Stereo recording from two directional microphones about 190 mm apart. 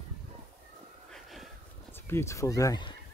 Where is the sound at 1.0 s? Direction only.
Centre (ahead or behind).